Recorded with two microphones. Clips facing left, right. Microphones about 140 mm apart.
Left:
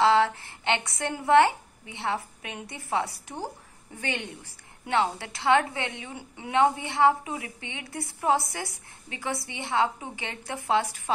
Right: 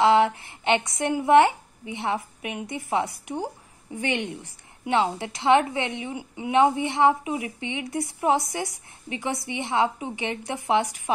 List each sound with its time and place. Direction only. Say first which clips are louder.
0.0 s a woman's voice: right 3 dB; 20° right (ahead or behind)